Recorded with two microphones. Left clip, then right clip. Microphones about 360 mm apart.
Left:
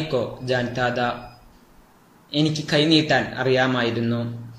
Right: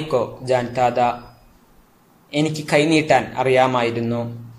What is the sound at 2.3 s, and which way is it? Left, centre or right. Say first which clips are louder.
A man's voice: right 3 dB; centre.